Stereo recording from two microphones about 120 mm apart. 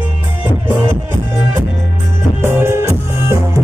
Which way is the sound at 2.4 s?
20° right (ahead or behind).